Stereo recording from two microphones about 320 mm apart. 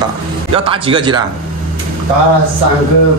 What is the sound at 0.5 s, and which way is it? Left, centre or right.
Speech, centre.